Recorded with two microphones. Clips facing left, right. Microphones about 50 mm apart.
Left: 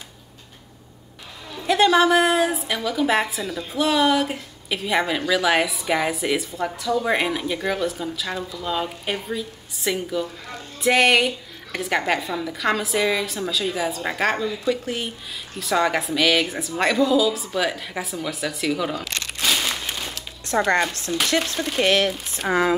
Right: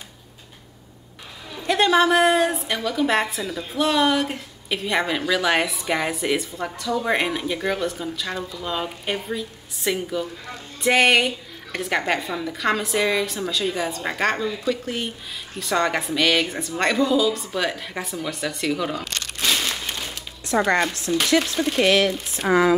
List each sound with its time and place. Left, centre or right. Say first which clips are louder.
1.5 s a woman's voice: left 1 dB; centre
22.4 s speech: right 3 dB; right